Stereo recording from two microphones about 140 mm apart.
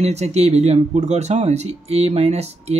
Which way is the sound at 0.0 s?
50° right (ahead or behind).